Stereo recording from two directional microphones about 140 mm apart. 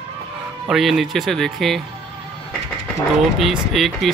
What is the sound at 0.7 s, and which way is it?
Speech, centre (ahead or behind).